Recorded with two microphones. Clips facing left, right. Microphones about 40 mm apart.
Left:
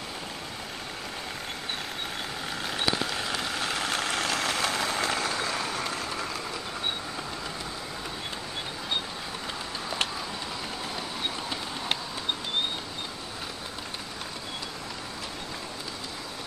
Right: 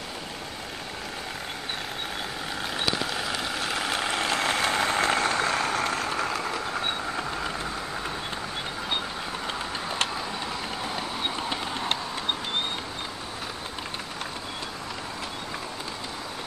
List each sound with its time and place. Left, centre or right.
2.5 s vehicle: centre
4.3 s vehicle: right